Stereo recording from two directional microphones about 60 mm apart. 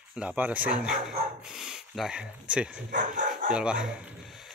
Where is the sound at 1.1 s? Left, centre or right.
Centre.